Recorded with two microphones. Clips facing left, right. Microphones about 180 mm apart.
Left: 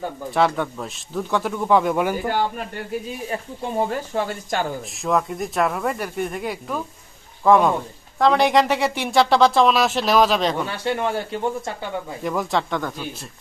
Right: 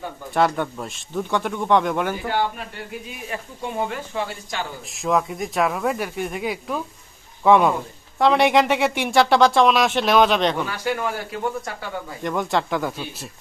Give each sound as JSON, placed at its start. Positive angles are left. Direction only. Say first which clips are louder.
{"t": 0.3, "sound": "speech", "louder": "even", "side_deg": 0}
{"t": 3.1, "sound": "speech", "louder": "left 4 dB", "side_deg": 30}
{"t": 5.0, "sound": "speech", "louder": "even", "side_deg": 0}
{"t": 10.6, "sound": "speech", "louder": "left 1 dB", "side_deg": 25}
{"t": 12.2, "sound": "speech", "louder": "right 1 dB", "side_deg": 0}